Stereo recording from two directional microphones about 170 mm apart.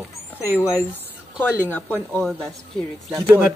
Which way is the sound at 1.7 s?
10° left (ahead or behind).